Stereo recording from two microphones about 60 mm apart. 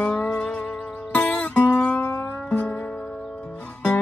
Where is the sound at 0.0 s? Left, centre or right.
Centre.